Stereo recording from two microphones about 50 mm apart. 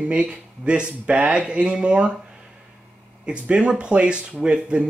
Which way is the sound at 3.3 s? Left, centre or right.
Centre.